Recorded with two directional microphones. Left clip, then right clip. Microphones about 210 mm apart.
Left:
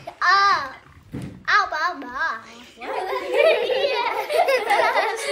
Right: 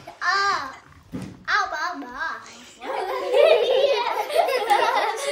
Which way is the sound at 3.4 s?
15° right (ahead or behind).